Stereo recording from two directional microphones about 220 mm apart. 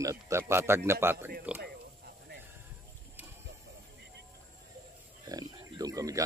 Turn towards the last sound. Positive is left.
turn(degrees=-15)  # may be behind; listen again after turning